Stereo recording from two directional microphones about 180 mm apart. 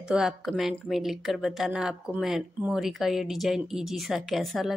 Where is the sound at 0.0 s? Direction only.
5° right (ahead or behind).